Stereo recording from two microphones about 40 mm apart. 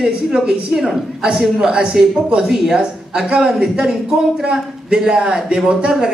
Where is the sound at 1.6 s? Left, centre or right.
Right.